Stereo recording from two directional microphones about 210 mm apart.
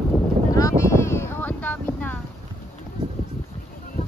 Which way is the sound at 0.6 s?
15° left (ahead or behind).